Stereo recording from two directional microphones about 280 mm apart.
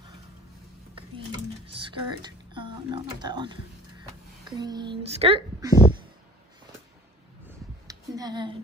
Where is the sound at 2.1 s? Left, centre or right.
Centre.